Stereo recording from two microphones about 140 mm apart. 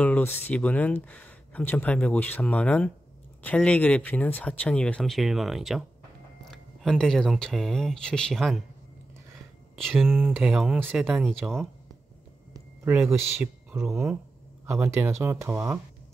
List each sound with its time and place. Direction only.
0.0 s speech: 10° left (ahead or behind)
9.8 s speech: centre (ahead or behind)
12.9 s speech: 5° right (ahead or behind)
14.7 s speech: 20° right (ahead or behind)